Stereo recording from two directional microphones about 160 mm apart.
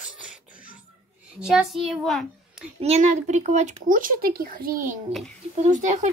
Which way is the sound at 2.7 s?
40° right (ahead or behind).